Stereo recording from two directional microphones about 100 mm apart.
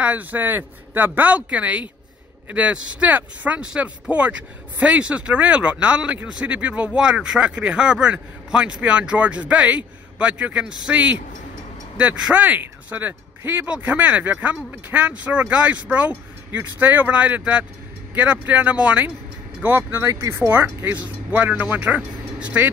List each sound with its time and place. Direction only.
0.0 s speech: 15° right (ahead or behind)